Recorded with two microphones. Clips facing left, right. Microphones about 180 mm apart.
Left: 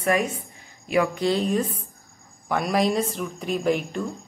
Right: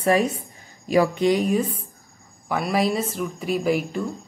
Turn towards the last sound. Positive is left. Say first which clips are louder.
# right 1 dB
turn(degrees=-5)  # may be behind; listen again after turning